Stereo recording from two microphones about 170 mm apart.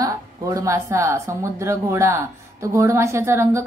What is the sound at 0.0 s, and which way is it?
A woman's voice, 20° right (ahead or behind).